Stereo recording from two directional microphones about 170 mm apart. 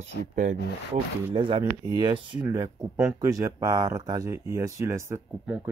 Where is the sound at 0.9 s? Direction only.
30° right (ahead or behind).